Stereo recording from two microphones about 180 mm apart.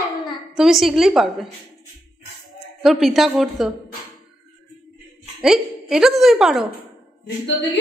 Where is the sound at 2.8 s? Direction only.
Centre (ahead or behind).